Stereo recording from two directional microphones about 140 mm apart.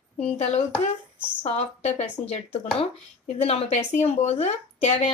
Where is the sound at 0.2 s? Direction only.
45° left (ahead or behind).